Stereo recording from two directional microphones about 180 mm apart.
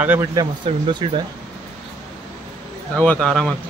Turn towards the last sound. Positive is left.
turn(degrees=5)  # may be behind; listen again after turning